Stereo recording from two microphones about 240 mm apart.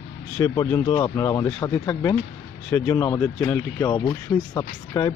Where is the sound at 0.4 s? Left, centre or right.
Centre.